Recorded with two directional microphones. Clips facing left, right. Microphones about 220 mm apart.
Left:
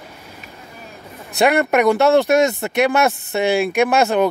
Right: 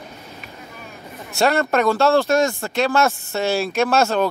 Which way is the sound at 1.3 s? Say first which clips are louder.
Left 3 dB; 15° left (ahead or behind).